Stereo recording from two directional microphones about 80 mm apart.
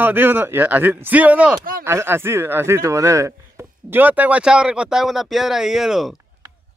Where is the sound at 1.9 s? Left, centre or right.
Right.